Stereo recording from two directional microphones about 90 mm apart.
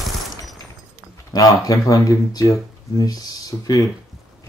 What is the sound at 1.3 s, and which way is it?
Speech, 40° left (ahead or behind).